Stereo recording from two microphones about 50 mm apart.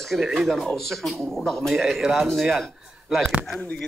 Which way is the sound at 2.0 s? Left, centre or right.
Centre.